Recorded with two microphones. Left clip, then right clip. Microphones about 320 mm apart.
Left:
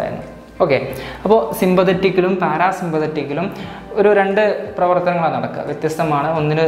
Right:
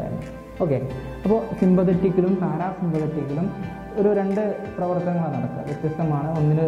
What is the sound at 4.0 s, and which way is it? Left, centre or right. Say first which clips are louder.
A man's voice: left 8 dB; centre.